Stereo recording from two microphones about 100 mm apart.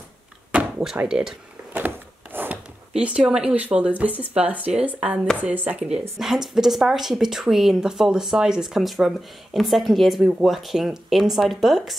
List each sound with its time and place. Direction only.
0.5 s door: 15° right (ahead or behind)
1.7 s wood: 20° right (ahead or behind)
2.3 s a sound: 20° right (ahead or behind)
3.0 s a woman's voice: 10° right (ahead or behind)